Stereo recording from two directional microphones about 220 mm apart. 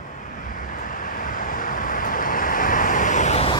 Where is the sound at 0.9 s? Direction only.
40° left (ahead or behind).